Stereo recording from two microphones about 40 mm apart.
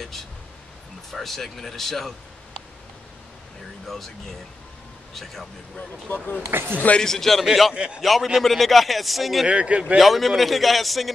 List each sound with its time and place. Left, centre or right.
1.1 s a man's voice: centre
3.8 s speech: centre
5.1 s a man's voice: centre
5.8 s speech: left
6.5 s speech: right
7.0 s a man's voice: centre
7.7 s a man's voice: right
8.0 s a man's voice: centre
9.5 s speech: right
9.9 s a man's voice: centre